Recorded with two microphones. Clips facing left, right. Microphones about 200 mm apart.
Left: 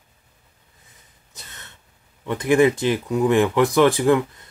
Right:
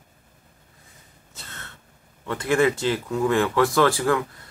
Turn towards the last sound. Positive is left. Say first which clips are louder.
# left 4 dB
turn(degrees=20)  # may be behind; listen again after turning